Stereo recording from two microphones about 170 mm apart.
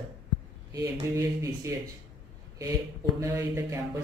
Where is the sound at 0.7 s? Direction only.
20° right (ahead or behind).